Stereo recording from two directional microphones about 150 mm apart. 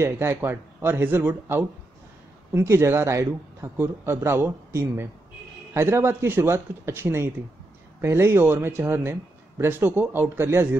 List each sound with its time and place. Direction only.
0.0 s speech: 15° right (ahead or behind)